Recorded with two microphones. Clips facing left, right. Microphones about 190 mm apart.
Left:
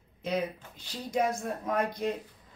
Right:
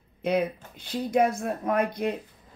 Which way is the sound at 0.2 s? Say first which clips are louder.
Right 6 dB; 60° right (ahead or behind).